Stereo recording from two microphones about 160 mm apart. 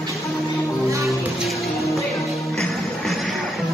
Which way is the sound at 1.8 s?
20° left (ahead or behind).